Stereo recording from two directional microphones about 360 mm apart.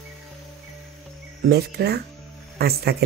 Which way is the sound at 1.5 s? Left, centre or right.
Right.